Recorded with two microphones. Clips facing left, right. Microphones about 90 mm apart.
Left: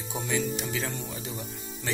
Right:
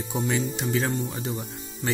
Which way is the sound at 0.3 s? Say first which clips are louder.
Right 2 dB; 45° right (ahead or behind).